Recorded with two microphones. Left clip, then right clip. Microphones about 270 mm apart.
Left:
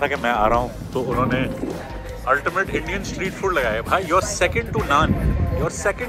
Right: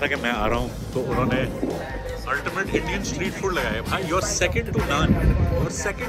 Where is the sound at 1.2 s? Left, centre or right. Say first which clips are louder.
Left 2 dB; left.